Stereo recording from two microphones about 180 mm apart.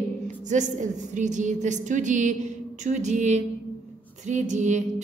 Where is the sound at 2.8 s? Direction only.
40° right (ahead or behind).